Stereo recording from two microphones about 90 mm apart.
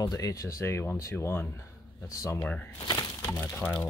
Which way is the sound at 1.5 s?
35° left (ahead or behind).